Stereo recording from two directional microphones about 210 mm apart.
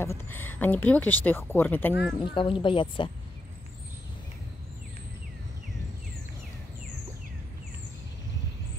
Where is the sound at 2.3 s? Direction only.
25° left (ahead or behind).